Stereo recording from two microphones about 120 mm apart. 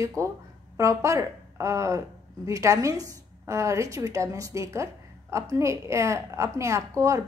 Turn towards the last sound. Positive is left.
turn(degrees=-25)  # may be behind; listen again after turning